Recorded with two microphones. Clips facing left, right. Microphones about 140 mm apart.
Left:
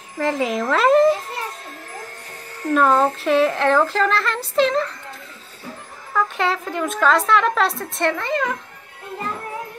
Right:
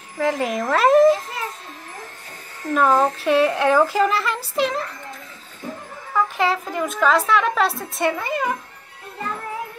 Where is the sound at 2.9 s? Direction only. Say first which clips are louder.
Even; centre (ahead or behind).